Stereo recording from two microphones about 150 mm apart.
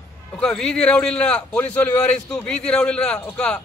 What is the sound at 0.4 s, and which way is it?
A man's voice, 5° left (ahead or behind).